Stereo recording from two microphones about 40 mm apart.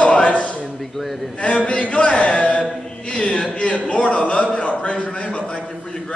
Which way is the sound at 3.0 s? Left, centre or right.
Left.